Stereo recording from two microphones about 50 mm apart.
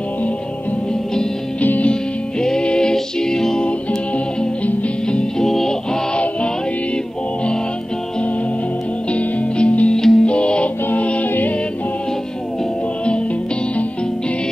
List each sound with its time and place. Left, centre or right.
1.6 s music: left
2.4 s music: centre
5.4 s music: centre
9.1 s music: left
9.9 s music: centre
10.2 s music: left